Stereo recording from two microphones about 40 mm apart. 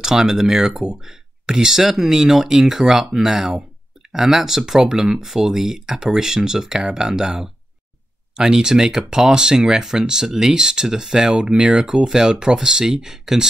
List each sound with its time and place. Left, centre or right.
0.0 s speech: centre